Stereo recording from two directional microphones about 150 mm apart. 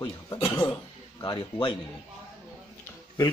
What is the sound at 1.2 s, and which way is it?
Speech, 30° left (ahead or behind).